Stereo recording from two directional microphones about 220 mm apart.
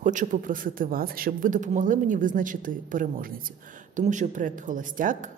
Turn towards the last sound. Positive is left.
turn(degrees=-35)  # may be behind; listen again after turning